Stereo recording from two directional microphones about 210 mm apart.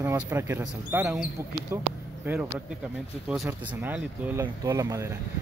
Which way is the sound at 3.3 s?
5° right (ahead or behind).